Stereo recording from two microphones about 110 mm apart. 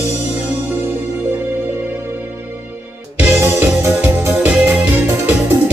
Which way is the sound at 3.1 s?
20° right (ahead or behind).